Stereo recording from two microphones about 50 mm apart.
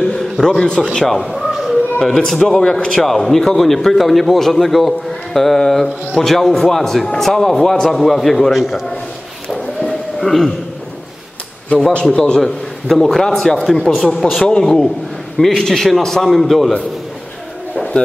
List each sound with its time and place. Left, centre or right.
0.0 s a sound: centre
0.9 s speech: centre
2.6 s a man's voice: centre
9.5 s a sound: centre
12.0 s a man's voice: centre
14.6 s a man's voice: centre